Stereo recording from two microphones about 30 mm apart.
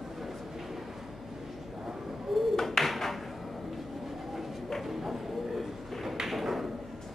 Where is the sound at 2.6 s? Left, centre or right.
Centre.